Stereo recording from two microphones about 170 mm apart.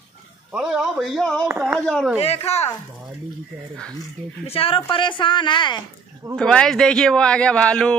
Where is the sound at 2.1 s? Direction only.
35° left (ahead or behind).